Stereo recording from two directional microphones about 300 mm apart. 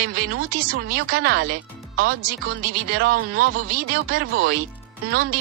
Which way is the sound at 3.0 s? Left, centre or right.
Right.